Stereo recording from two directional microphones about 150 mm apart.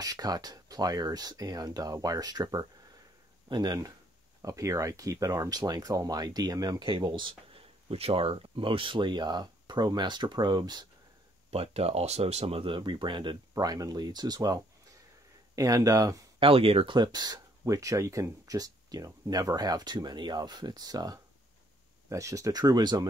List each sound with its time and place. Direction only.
0.0 s speech: 25° right (ahead or behind)
11.5 s speech: 40° right (ahead or behind); by 16.2 s 25° right (ahead or behind)
16.3 s speech: 35° right (ahead or behind)